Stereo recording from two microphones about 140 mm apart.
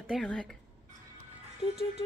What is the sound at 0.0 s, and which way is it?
Speech, 5° left (ahead or behind).